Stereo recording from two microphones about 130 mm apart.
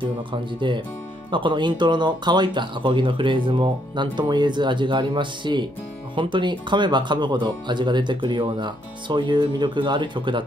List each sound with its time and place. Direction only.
0.0 s speech: 40° right (ahead or behind)